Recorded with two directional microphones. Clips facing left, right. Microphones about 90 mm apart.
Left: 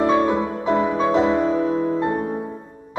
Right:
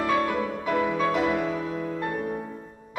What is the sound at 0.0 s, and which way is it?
Music, 25° left (ahead or behind).